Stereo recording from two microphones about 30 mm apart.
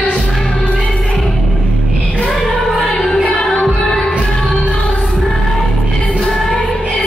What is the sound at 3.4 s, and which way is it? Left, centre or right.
Music, left.